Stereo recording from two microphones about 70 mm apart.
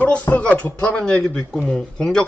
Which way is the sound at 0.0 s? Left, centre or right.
Left.